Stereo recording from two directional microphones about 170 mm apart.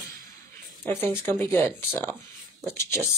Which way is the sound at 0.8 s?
10° left (ahead or behind).